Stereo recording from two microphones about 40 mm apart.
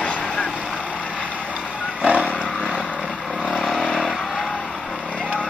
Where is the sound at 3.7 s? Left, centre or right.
Centre.